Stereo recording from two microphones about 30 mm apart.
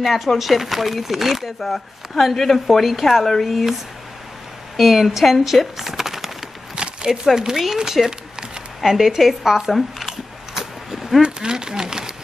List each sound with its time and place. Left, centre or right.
0.0 s a woman's voice: centre
2.6 s speech: centre
4.7 s speech: centre
6.7 s a sound: right
7.1 s a woman's voice: centre
10.6 s a sound: centre
11.4 s speech: right